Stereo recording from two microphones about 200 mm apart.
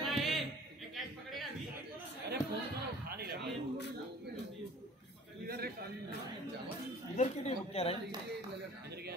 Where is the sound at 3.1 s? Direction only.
50° right (ahead or behind).